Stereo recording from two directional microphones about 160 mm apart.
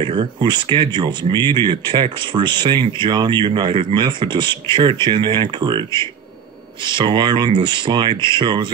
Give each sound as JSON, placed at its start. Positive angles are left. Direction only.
{"t": 0.0, "sound": "speech", "side_deg": -30}
{"t": 7.0, "sound": "speech", "side_deg": -30}